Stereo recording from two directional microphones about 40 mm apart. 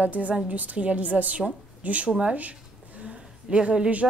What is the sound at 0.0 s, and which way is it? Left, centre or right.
A woman's voice, right.